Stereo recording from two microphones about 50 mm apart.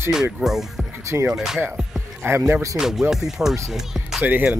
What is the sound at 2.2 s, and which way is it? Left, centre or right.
Speech, right.